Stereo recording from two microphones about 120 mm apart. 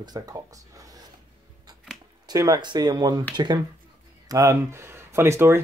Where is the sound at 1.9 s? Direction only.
Centre (ahead or behind).